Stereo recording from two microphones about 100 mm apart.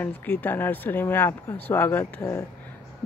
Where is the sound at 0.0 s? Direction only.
20° left (ahead or behind).